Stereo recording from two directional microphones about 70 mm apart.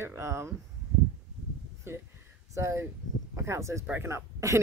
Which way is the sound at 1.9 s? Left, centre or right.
Right.